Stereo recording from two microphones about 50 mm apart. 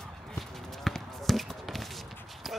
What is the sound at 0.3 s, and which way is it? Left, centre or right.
Basketball bounce, centre.